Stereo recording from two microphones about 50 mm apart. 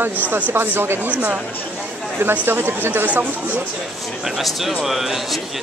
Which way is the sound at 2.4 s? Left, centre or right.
Right.